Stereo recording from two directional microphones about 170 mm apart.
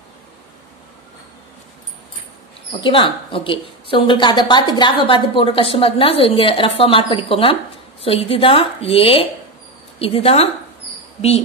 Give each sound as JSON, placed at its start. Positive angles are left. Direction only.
{"t": 2.8, "sound": "a woman's voice", "side_deg": 30}